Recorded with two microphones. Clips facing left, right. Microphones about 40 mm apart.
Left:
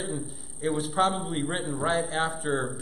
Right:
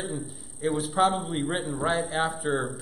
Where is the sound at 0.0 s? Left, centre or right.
Centre.